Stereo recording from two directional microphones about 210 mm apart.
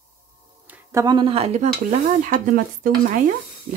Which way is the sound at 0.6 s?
15° right (ahead or behind).